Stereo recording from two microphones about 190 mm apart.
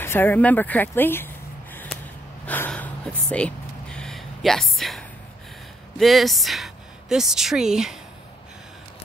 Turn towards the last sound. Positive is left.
turn(degrees=-5)  # may be behind; listen again after turning